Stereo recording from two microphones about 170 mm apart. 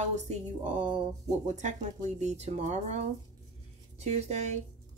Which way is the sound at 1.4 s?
45° right (ahead or behind).